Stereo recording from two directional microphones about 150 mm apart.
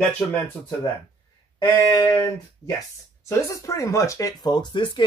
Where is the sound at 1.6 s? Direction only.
25° left (ahead or behind).